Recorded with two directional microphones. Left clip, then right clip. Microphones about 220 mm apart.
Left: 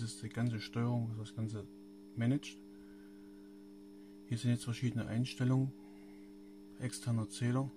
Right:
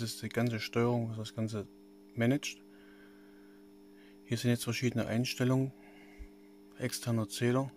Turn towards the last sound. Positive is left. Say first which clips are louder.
# right 7 dB
turn(degrees=-30)  # may be behind; listen again after turning